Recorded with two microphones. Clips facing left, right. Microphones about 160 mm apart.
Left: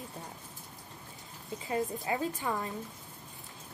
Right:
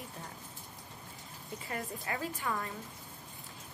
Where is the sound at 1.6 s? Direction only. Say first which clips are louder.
Left 7 dB; 20° left (ahead or behind).